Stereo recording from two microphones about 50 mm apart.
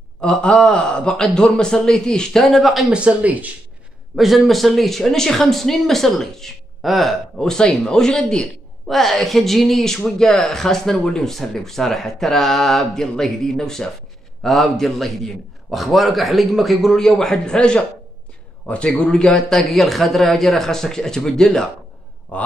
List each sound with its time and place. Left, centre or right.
0.2 s speech: centre
2.4 s speech: centre
2.9 s speech: right
4.1 s speech: centre
7.4 s speech: centre
8.8 s speech: centre
17.6 s a man's voice: left
19.3 s speech: centre